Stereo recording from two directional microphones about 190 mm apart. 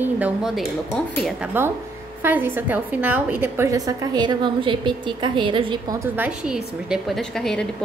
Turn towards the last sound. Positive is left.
turn(degrees=0)  # may be behind; listen again after turning